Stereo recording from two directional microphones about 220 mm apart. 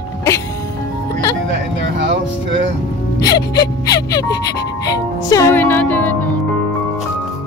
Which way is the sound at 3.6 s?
15° left (ahead or behind).